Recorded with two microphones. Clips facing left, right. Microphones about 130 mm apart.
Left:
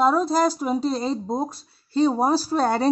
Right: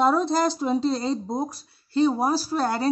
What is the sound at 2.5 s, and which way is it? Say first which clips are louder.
Speech: left 3 dB; 25° left (ahead or behind).